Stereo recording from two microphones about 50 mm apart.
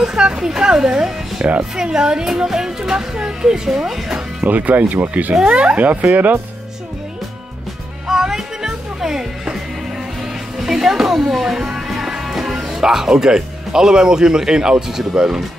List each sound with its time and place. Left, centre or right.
0.0 s speech: centre
4.5 s speech: right
5.5 s speech: right
5.8 s speech: right
8.1 s music: centre
10.6 s speech: centre